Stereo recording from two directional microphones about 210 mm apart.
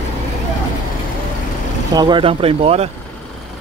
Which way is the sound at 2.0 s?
20° right (ahead or behind).